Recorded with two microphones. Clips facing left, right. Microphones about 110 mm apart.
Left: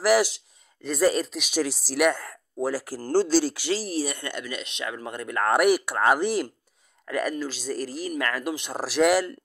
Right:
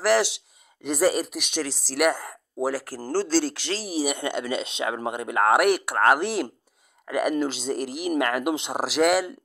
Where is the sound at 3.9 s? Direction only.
15° right (ahead or behind).